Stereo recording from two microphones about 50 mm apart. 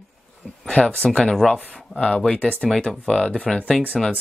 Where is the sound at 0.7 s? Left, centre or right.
Centre.